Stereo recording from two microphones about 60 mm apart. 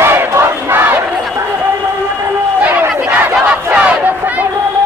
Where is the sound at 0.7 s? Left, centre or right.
Right.